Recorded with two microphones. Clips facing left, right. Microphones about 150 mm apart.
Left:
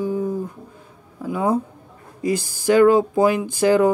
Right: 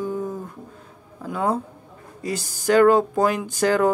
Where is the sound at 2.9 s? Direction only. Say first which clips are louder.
Left 3 dB; 10° left (ahead or behind).